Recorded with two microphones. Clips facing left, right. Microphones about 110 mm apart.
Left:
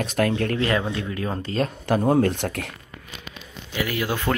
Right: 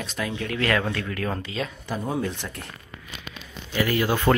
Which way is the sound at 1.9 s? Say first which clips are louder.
Left 10 dB; 60° left (ahead or behind).